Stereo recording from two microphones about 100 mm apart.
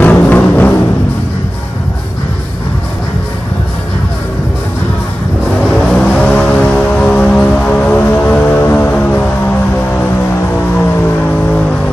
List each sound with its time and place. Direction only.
0.0 s music: 15° left (ahead or behind)
5.6 s music: 5° left (ahead or behind)